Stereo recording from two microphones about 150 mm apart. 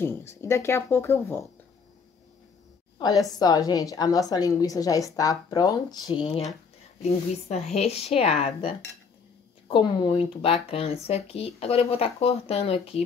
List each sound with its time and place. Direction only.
0.0 s speech: 15° left (ahead or behind)
3.0 s a woman's voice: 25° left (ahead or behind)
7.0 s speech: 45° left (ahead or behind)